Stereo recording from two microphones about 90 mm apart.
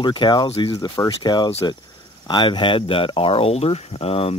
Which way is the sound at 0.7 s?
45° left (ahead or behind).